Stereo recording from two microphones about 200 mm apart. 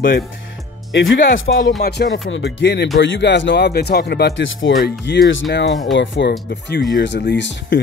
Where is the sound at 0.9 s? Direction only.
70° left (ahead or behind).